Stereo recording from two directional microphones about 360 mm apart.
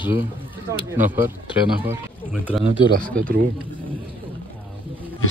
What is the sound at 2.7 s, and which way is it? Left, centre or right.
Speech, right.